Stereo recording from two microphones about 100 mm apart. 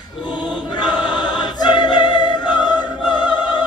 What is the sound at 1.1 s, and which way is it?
Music, 45° left (ahead or behind).